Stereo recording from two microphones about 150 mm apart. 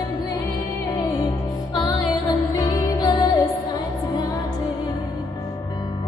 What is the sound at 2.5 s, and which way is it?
Music, 25° left (ahead or behind).